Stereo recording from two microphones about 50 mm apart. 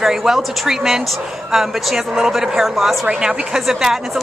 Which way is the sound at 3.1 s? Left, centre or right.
Centre.